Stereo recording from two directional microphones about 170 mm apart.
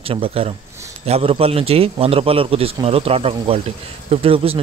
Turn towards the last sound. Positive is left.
turn(degrees=-35)  # may be behind; listen again after turning